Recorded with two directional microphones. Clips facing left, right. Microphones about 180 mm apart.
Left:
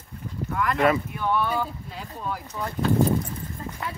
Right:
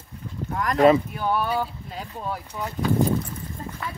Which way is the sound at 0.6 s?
40° right (ahead or behind).